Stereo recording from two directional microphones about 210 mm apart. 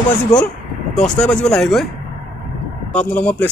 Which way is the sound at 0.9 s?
5° left (ahead or behind).